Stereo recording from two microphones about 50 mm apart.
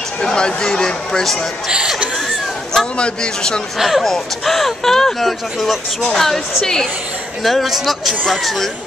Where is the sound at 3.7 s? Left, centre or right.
Centre.